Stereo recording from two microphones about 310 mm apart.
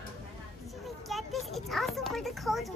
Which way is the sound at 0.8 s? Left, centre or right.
Centre.